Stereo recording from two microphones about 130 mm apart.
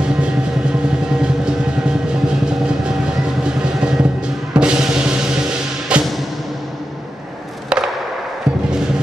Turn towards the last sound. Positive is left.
turn(degrees=-5)  # may be behind; listen again after turning